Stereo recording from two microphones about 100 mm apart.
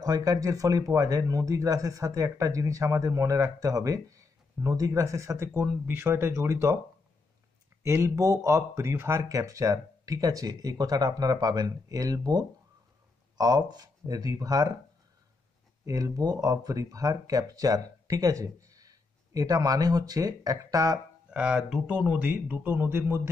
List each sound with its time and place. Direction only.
0.0 s speech: 40° right (ahead or behind)
5.6 s speech: 20° right (ahead or behind)
7.8 s speech: 30° right (ahead or behind)
15.8 s speech: 35° right (ahead or behind)
21.3 s speech: 10° right (ahead or behind)
22.3 s speech: 20° right (ahead or behind)